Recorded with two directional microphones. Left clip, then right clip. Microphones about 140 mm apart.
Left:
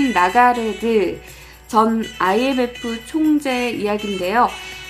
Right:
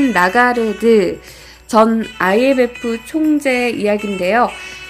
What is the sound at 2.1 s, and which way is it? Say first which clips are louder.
A woman's voice: right 5 dB; 25° right (ahead or behind).